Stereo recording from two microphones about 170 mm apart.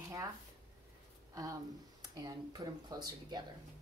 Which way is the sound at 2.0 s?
20° right (ahead or behind).